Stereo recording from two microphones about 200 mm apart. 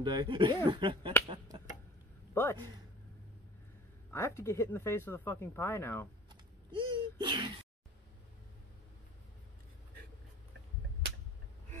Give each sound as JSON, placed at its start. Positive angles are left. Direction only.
{"t": 0.0, "sound": "speech", "side_deg": -20}
{"t": 1.2, "sound": "a sound", "side_deg": -20}
{"t": 2.3, "sound": "speech", "side_deg": 10}
{"t": 4.1, "sound": "speech", "side_deg": 15}
{"t": 6.7, "sound": "speech", "side_deg": -25}